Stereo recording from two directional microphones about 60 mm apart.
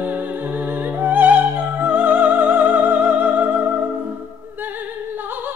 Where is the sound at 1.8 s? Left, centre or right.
Right.